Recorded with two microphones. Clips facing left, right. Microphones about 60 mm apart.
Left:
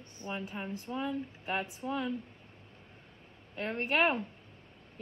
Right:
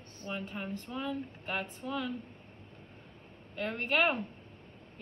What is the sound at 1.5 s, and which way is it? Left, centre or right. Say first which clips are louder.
Speech: left 2 dB; left.